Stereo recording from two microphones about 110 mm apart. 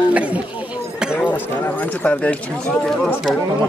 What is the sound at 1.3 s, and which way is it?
Speech, 20° left (ahead or behind).